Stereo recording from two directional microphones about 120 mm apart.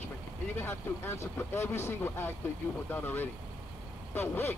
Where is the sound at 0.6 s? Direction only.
20° left (ahead or behind).